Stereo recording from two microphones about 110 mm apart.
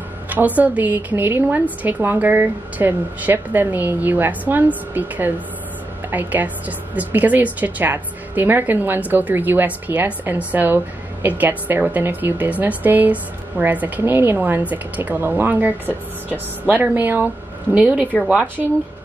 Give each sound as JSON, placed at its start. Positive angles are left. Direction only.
{"t": 0.3, "sound": "a woman's voice", "side_deg": -15}